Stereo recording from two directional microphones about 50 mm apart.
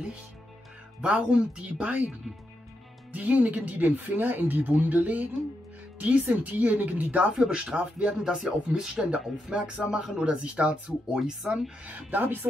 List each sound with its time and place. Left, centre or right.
1.0 s speech: right
7.3 s speech: right
8.2 s speech: centre
11.8 s speech: right